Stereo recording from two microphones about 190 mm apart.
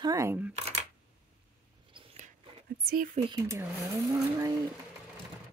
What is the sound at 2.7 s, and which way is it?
Speech, 50° right (ahead or behind).